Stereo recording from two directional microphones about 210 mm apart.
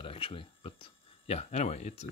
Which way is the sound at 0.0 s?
25° left (ahead or behind).